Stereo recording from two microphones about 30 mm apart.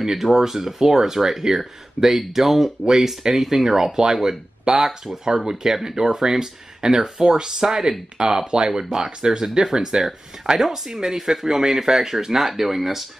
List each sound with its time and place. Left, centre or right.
0.0 s speech: centre
8.5 s speech: right; by 13.1 s centre